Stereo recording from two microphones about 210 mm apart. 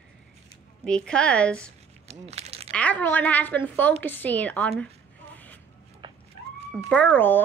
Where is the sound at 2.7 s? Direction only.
5° left (ahead or behind).